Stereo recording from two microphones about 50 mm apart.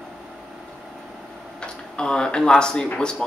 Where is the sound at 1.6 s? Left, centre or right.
Centre.